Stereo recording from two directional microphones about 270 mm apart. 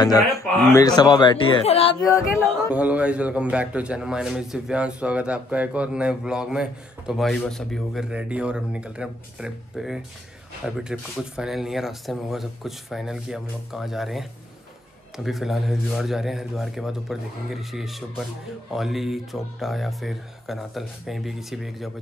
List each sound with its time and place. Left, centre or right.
0.6 s speech: centre
2.0 s speech: centre
2.7 s a man's voice: centre